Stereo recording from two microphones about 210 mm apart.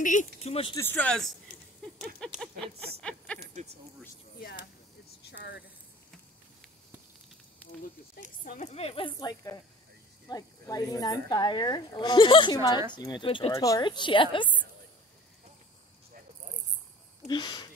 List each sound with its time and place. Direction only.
0.0 s speech: 35° left (ahead or behind)
0.7 s a man's voice: 10° left (ahead or behind)
3.0 s a sound: 5° left (ahead or behind)
5.3 s a sound: 55° left (ahead or behind)
8.5 s speech: 35° left (ahead or behind)
17.3 s speech: 20° left (ahead or behind)